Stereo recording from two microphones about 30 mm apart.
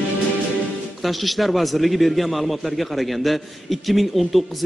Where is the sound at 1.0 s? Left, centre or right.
Centre.